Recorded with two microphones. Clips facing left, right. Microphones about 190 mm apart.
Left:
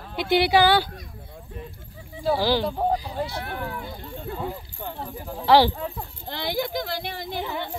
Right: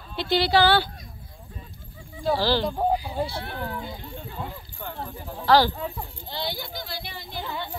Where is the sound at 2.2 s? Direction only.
10° left (ahead or behind).